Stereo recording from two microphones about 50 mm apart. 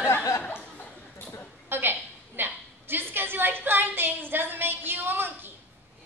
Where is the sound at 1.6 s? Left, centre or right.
Right.